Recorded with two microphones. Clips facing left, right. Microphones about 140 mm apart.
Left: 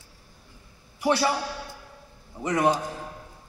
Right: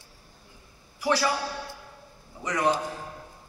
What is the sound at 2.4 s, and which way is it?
Speech, 20° left (ahead or behind).